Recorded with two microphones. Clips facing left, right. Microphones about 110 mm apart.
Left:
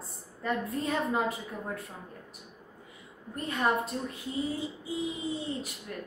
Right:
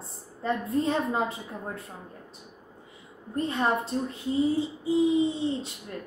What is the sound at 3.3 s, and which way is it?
A woman's voice, 25° right (ahead or behind).